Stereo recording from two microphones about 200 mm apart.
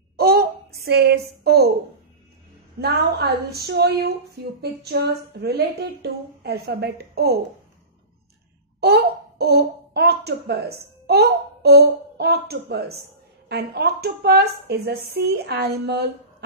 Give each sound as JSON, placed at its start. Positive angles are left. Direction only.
{"t": 0.2, "sound": "a sound", "side_deg": -50}
{"t": 1.4, "sound": "a woman's voice", "side_deg": -50}
{"t": 2.8, "sound": "speech", "side_deg": -55}
{"t": 8.8, "sound": "speech", "side_deg": -55}